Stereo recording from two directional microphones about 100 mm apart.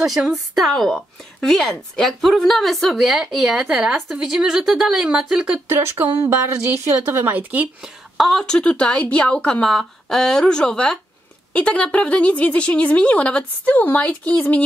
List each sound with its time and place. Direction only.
0.0 s speech: centre (ahead or behind)
6.3 s speech: 25° right (ahead or behind)
8.2 s a woman's voice: centre (ahead or behind)